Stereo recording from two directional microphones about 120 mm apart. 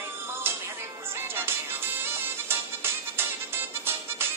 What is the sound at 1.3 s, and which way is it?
Music, 20° right (ahead or behind).